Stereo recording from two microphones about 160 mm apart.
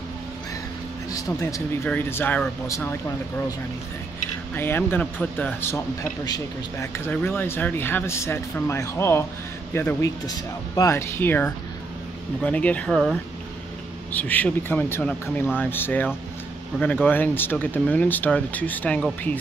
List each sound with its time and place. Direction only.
1.1 s speech: 20° left (ahead or behind)
4.6 s speech: 15° left (ahead or behind)
6.2 s speech: 25° left (ahead or behind)
7.1 s speech: 10° left (ahead or behind)